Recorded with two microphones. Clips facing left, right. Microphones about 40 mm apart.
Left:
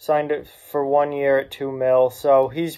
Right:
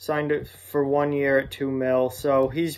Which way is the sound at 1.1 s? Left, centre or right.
Left.